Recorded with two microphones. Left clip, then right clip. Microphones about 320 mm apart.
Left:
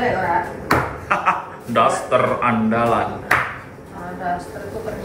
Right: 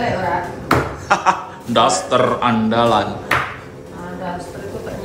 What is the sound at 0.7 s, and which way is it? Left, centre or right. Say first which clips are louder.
Speech: right 4 dB; centre.